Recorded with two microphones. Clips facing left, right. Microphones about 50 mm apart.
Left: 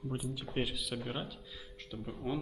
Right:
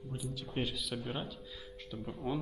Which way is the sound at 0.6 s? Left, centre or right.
Centre.